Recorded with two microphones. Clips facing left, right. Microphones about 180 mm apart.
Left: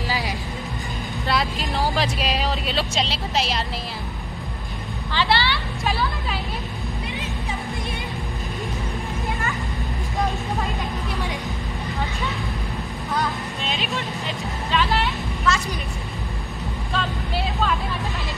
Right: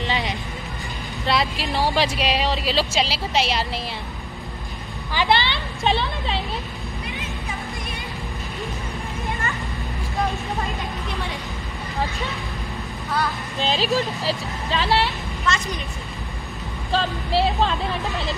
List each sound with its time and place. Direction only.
0.0 s music: 5° left (ahead or behind)
1.2 s speech: centre (ahead or behind)
5.1 s vehicle: 20° right (ahead or behind)
13.6 s speech: 35° right (ahead or behind)
16.9 s speech: 30° right (ahead or behind)